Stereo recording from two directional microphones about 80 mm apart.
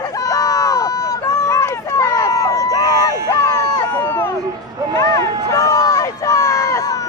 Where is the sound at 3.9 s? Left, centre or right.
Left.